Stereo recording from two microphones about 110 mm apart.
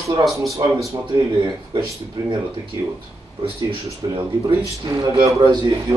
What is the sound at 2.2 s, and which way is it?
Speech, 35° right (ahead or behind).